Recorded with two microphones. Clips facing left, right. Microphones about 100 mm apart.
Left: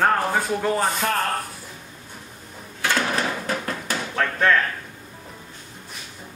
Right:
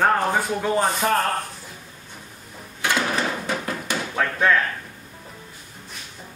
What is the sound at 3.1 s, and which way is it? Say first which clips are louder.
Hammer: even; centre (ahead or behind).